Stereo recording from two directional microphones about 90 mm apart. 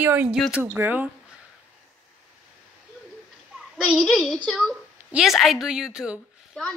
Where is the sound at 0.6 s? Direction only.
20° right (ahead or behind).